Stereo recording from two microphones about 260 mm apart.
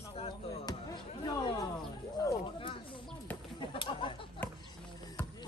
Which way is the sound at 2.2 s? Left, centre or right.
Centre.